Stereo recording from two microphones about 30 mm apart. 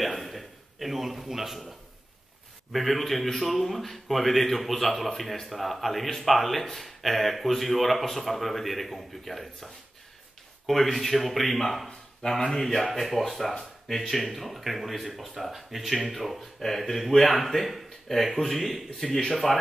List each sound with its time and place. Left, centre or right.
0.0 s a sound: centre
2.7 s a man's voice: centre
10.7 s a man's voice: centre
19.0 s speech: centre
19.3 s a man's voice: centre